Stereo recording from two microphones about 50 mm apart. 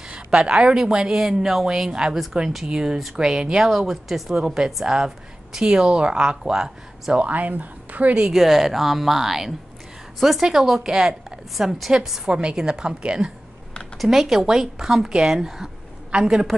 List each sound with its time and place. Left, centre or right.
0.1 s speech: centre
7.2 s speech: right
8.3 s speech: centre
12.3 s speech: centre
13.9 s speech: centre